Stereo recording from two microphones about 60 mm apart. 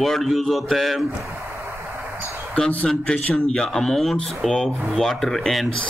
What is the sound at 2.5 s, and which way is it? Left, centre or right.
Speech, left.